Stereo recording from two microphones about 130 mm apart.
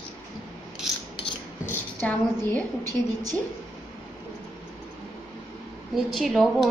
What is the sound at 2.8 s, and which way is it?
Speech, 25° right (ahead or behind).